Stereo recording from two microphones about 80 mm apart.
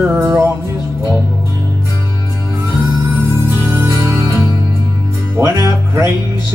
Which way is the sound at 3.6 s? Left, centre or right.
Right.